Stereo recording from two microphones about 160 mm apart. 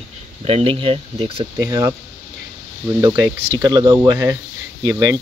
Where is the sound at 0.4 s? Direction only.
35° right (ahead or behind).